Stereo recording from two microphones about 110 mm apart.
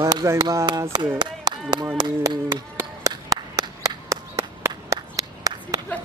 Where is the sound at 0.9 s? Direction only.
40° right (ahead or behind).